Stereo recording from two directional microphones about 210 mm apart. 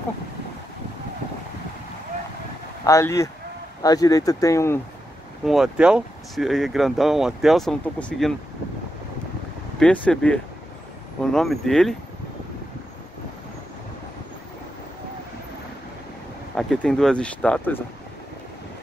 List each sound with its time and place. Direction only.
2.8 s speech: 15° left (ahead or behind)
5.4 s speech: centre (ahead or behind)
9.8 s speech: 5° left (ahead or behind)
16.5 s speech: 5° left (ahead or behind)